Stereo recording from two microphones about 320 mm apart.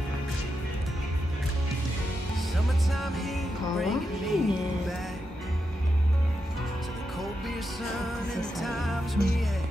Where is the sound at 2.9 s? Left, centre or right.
Centre.